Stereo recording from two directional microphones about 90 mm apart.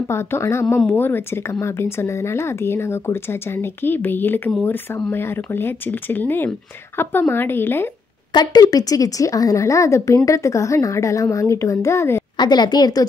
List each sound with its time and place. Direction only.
0.1 s speech: 30° left (ahead or behind)
8.3 s speech: 50° left (ahead or behind); by 12.2 s 35° left (ahead or behind)
12.4 s speech: 55° left (ahead or behind)